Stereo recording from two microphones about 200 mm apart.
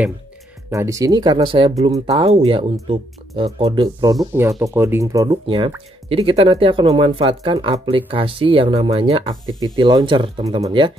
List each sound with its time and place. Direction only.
0.7 s speech: 15° right (ahead or behind)
2.0 s speech: 30° right (ahead or behind)